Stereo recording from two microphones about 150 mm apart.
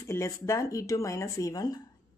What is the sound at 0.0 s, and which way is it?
Speech, 20° left (ahead or behind).